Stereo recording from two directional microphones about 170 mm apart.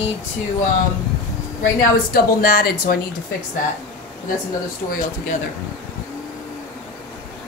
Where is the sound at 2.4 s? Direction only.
60° left (ahead or behind).